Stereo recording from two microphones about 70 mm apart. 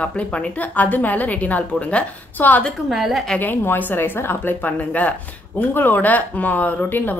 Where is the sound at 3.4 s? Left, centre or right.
Left.